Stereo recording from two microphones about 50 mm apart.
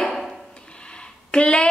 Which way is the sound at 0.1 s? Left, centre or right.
Centre.